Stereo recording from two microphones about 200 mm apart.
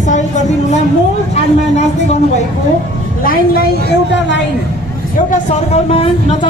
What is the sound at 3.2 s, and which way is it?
Speech, 45° left (ahead or behind).